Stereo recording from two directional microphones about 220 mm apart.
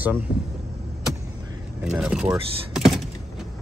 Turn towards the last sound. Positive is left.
turn(degrees=0)  # may be behind; listen again after turning